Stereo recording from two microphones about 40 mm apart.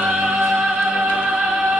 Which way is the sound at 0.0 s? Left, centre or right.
Centre.